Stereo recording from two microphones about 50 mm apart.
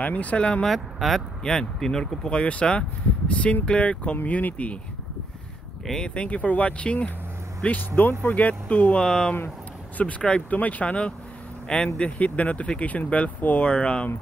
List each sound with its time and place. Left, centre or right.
0.0 s speech: left
0.7 s speech: centre
1.4 s speech: centre; by 4.7 s left
5.9 s speech: centre
9.9 s speech: left
12.0 s speech: left